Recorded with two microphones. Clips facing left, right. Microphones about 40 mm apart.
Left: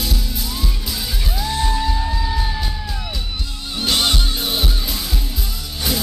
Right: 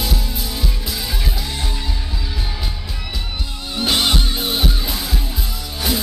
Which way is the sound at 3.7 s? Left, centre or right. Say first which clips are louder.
Right 1 dB; centre.